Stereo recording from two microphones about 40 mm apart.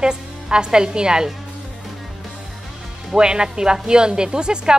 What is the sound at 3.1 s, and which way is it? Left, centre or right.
Speech, centre.